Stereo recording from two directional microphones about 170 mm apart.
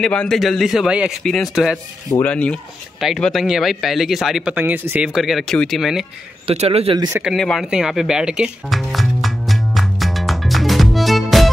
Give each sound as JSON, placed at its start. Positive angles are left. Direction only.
{"t": 0.0, "sound": "speech", "side_deg": 5}
{"t": 2.2, "sound": "speech", "side_deg": 5}
{"t": 6.4, "sound": "speech", "side_deg": -40}
{"t": 7.2, "sound": "music", "side_deg": 0}